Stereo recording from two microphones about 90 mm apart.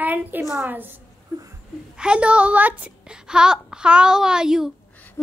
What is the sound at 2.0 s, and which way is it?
Speech, 10° right (ahead or behind).